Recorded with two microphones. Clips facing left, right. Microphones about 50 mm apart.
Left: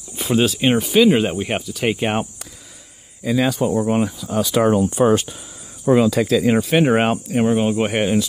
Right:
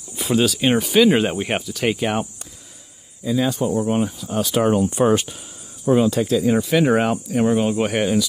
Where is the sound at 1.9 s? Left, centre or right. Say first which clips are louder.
Left 1 dB; left.